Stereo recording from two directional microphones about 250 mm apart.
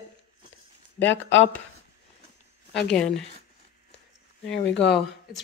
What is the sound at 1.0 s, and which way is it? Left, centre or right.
Speech, left.